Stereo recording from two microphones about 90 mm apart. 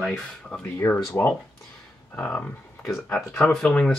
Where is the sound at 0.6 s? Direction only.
25° left (ahead or behind).